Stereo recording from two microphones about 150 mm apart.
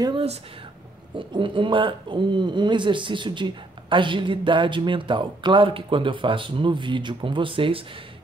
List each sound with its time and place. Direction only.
0.0 s speech: 35° right (ahead or behind)